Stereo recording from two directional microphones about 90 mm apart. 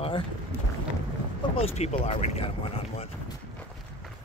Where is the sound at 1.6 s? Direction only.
90° left.